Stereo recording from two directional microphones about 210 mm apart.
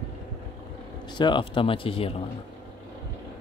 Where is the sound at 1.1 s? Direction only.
20° left (ahead or behind).